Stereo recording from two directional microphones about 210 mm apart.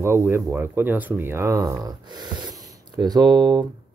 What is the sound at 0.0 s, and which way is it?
Speech, 15° right (ahead or behind).